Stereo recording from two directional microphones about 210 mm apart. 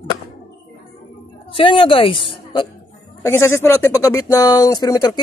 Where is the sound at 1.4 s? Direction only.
25° left (ahead or behind).